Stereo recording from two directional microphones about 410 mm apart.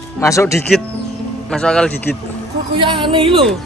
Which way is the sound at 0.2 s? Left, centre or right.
Centre.